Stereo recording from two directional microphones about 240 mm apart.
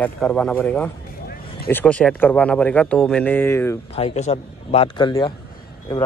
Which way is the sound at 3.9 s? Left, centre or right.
Left.